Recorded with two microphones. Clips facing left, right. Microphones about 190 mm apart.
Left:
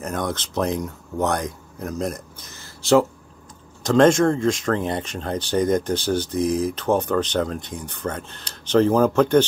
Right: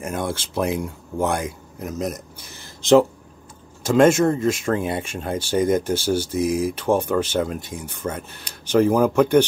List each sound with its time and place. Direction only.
0.0 s speech: 10° right (ahead or behind)
2.3 s a sound: 15° right (ahead or behind)
3.8 s speech: 5° right (ahead or behind)